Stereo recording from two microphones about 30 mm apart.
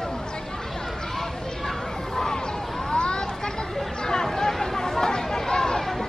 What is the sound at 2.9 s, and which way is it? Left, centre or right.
Children playing, left.